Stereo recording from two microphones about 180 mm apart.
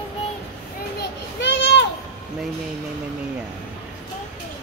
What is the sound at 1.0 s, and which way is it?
Children playing, 90° left.